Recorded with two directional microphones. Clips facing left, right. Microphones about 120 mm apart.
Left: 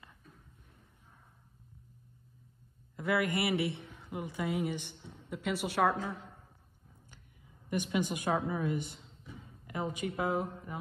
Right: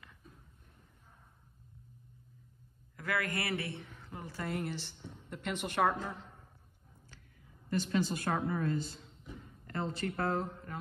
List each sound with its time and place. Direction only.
3.0 s a man's voice: 20° left (ahead or behind)
4.5 s a woman's voice: 5° left (ahead or behind)
7.7 s speech: 15° left (ahead or behind)